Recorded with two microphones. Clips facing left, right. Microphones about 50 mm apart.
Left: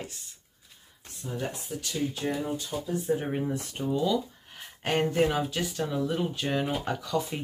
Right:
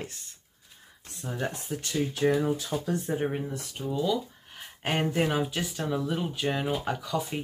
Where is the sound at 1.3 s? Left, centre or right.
Right.